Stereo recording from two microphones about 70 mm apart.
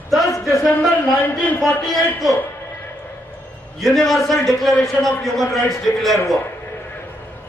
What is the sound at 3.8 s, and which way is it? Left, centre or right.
A man's voice, centre.